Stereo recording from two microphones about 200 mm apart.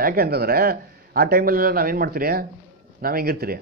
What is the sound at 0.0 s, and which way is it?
Speech, 50° right (ahead or behind).